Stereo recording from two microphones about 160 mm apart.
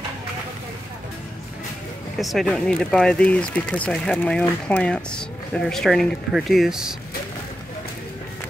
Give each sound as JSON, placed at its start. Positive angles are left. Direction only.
{"t": 2.1, "sound": "speech", "side_deg": 0}